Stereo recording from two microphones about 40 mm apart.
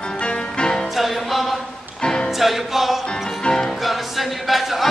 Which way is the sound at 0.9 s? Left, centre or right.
Centre.